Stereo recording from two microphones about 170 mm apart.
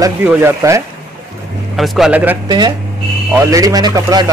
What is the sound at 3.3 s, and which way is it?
Speech, 20° right (ahead or behind).